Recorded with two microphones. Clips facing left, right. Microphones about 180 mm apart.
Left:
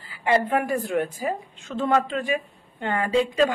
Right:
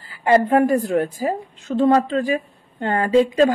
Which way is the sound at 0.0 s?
45° right (ahead or behind).